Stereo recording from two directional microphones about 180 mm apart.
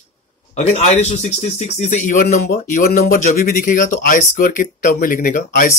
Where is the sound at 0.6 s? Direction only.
40° left (ahead or behind).